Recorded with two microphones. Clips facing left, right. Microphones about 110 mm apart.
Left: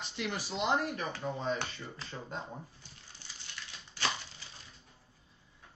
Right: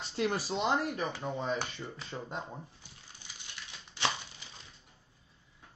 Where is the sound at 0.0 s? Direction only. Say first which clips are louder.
Right 5 dB; 35° right (ahead or behind).